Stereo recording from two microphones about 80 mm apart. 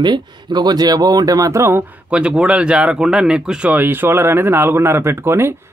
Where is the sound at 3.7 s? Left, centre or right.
Right.